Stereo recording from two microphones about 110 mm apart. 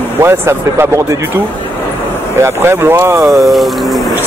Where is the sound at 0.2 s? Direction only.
25° right (ahead or behind).